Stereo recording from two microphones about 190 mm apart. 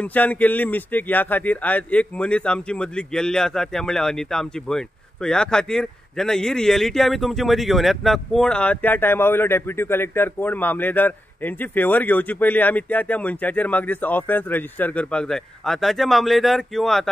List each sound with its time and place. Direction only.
0.0 s speech: 10° left (ahead or behind)